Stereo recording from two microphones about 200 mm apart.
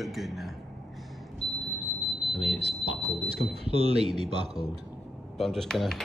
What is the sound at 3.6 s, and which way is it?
Speech, 30° right (ahead or behind).